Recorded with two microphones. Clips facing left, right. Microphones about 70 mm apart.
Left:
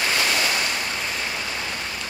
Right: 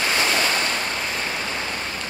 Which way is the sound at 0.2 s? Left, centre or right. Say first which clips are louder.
Right 2 dB; right.